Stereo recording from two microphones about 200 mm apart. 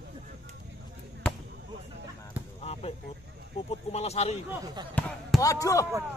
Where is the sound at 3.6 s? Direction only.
30° left (ahead or behind).